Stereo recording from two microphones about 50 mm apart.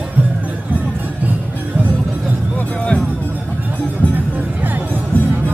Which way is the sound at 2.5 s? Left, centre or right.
Left.